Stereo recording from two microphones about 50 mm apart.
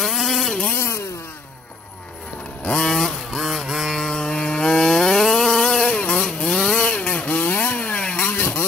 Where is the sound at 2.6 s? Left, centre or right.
Centre.